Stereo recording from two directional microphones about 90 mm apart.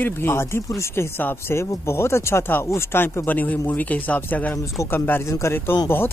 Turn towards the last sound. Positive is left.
turn(degrees=30)  # may be behind; listen again after turning